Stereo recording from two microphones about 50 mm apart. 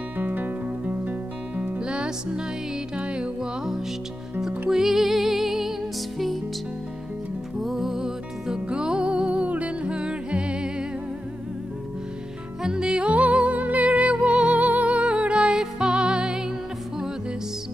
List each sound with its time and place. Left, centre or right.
0.2 s music: right
1.8 s music: centre
4.4 s music: centre
7.6 s music: centre
12.6 s music: centre